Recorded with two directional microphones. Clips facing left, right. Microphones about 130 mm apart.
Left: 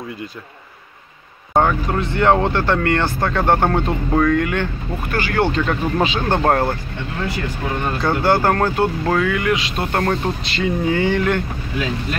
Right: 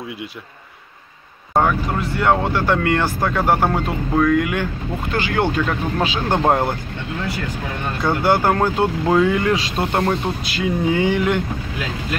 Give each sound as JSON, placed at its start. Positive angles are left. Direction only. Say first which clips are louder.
{"t": 1.5, "sound": "speech", "louder": "left 1 dB", "side_deg": 0}
{"t": 5.7, "sound": "speech", "louder": "left 2 dB", "side_deg": 0}
{"t": 8.0, "sound": "speech", "louder": "even", "side_deg": -15}
{"t": 9.3, "sound": "speech", "louder": "right 1 dB", "side_deg": -30}
{"t": 10.0, "sound": "speech", "louder": "even", "side_deg": -5}